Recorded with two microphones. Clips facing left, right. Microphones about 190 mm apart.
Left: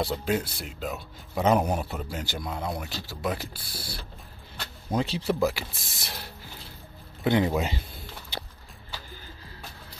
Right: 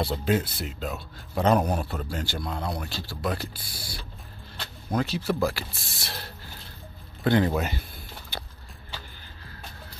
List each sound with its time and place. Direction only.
0.0 s a man's voice: centre (ahead or behind)
4.6 s a sound: 10° left (ahead or behind)
5.0 s speech: 30° left (ahead or behind)
5.5 s a man's voice: 15° left (ahead or behind)
7.2 s a man's voice: 15° left (ahead or behind)